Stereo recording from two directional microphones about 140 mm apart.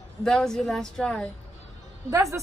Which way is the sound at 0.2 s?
5° left (ahead or behind).